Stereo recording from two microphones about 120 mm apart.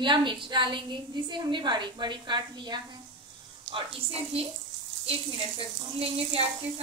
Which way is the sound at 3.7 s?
55° right (ahead or behind).